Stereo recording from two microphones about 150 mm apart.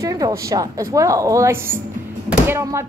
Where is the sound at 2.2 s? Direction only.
15° right (ahead or behind).